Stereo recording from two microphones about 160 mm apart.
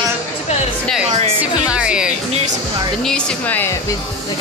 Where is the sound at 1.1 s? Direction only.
45° right (ahead or behind).